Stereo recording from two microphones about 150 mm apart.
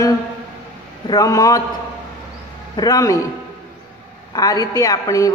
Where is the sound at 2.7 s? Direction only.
25° left (ahead or behind).